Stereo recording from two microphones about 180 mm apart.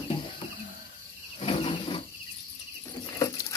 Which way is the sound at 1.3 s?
30° left (ahead or behind).